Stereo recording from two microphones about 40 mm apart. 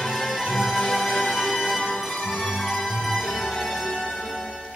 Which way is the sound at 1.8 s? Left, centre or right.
Centre.